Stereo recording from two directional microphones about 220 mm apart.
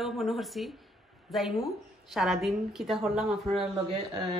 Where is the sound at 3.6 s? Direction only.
30° right (ahead or behind).